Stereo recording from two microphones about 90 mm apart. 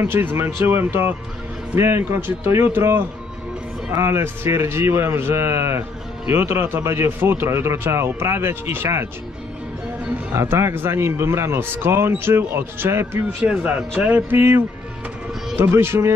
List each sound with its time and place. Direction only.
0.0 s speech: 25° right (ahead or behind)
10.3 s speech: 30° right (ahead or behind)
13.4 s speech: 15° right (ahead or behind)
15.6 s speech: 25° right (ahead or behind)